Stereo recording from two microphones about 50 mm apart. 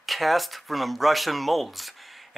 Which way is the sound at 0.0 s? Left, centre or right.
Centre.